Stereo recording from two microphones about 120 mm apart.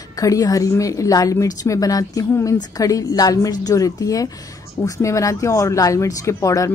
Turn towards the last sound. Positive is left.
turn(degrees=25)  # may be behind; listen again after turning